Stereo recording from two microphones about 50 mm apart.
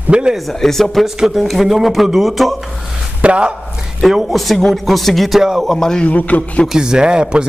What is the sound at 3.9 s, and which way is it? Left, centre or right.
Speech, centre.